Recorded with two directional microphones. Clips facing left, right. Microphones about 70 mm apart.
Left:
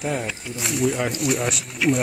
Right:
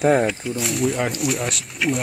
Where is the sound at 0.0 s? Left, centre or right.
Right.